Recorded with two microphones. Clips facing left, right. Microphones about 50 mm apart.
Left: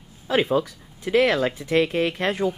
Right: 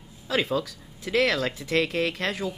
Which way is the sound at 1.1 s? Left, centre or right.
Centre.